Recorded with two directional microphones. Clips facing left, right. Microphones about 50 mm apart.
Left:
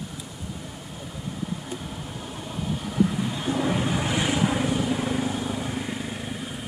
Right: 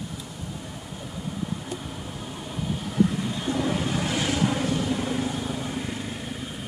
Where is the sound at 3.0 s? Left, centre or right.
Centre.